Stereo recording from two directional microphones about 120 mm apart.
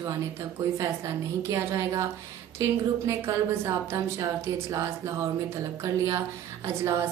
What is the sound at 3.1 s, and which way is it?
A woman's voice, 25° right (ahead or behind).